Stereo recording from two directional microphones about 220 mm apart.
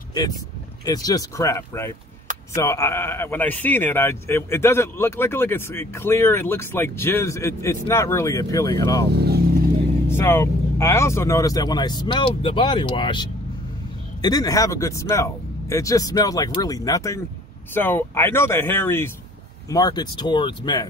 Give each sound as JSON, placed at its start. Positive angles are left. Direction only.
{"t": 0.1, "sound": "speech", "side_deg": 15}
{"t": 9.1, "sound": "music", "side_deg": -45}
{"t": 10.0, "sound": "speech", "side_deg": 10}